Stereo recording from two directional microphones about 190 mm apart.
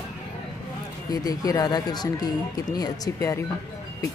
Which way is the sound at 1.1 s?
20° left (ahead or behind).